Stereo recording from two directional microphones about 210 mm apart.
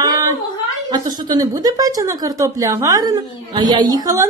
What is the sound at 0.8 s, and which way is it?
A woman's voice, 20° right (ahead or behind).